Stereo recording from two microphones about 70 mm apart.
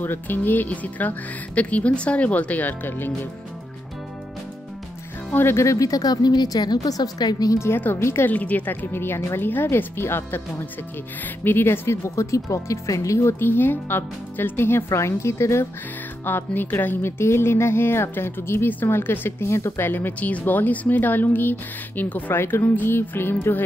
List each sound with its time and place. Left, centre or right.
0.0 s speech: left
5.3 s speech: left
5.6 s a woman's voice: left
7.5 s speech: left
8.3 s speech: left
16.3 s speech: left